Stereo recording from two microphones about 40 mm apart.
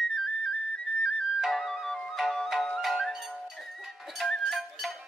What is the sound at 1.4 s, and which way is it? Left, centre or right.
Music, centre.